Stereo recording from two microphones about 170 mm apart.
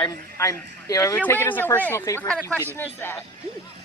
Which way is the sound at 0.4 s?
20° left (ahead or behind).